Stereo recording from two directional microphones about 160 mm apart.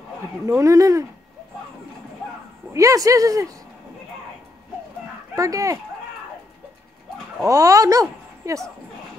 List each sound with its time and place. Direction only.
0.5 s speech: 20° right (ahead or behind)
2.7 s speech: 20° right (ahead or behind)
5.3 s speech: 20° right (ahead or behind)
7.4 s speech: 20° right (ahead or behind)